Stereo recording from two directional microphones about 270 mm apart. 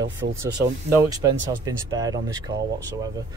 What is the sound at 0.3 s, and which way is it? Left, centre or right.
Speech, centre.